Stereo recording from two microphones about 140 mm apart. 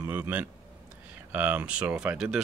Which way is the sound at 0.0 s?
10° right (ahead or behind).